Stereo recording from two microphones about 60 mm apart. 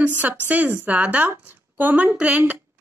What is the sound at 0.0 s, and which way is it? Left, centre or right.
A woman's voice, right.